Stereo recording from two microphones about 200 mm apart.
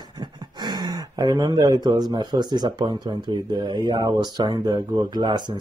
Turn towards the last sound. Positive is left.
turn(degrees=-20)  # may be behind; listen again after turning